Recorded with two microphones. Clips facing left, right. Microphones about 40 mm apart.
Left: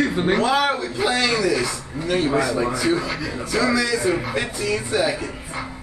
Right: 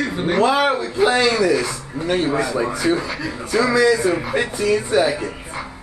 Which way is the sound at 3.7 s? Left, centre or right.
Right.